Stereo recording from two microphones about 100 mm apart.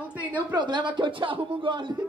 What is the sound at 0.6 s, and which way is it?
Speech, 50° right (ahead or behind).